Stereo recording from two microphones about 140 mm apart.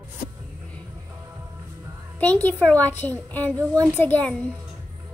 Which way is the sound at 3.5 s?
20° right (ahead or behind).